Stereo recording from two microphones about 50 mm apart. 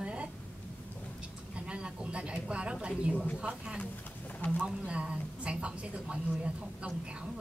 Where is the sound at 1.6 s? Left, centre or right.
Right.